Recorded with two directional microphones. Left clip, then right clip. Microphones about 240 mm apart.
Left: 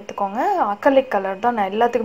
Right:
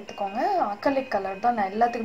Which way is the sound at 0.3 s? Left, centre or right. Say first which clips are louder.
Left 4 dB; left.